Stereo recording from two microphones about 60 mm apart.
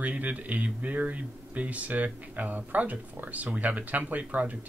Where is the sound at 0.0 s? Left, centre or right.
Right.